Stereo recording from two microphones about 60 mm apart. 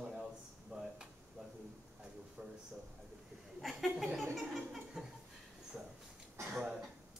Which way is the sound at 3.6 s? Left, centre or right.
Centre.